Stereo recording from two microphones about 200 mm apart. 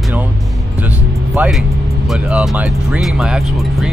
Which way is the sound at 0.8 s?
10° right (ahead or behind).